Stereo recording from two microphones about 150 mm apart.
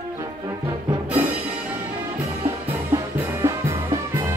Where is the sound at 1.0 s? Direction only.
10° right (ahead or behind).